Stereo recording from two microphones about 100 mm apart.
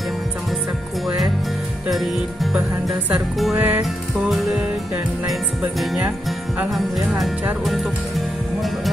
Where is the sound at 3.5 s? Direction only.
20° right (ahead or behind).